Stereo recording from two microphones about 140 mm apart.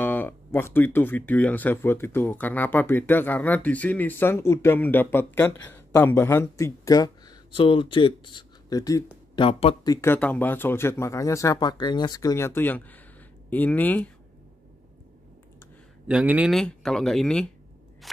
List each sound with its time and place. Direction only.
0.0 s speech: 15° left (ahead or behind)
7.5 s speech: 40° left (ahead or behind)
9.4 s speech: 45° left (ahead or behind)
9.8 s speech: 20° left (ahead or behind)
16.1 s speech: 10° right (ahead or behind)
16.5 s speech: 5° left (ahead or behind)
18.0 s scissors: centre (ahead or behind)